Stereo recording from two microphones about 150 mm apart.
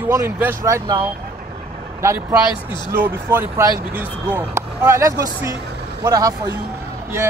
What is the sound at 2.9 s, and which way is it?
Speech, 15° right (ahead or behind).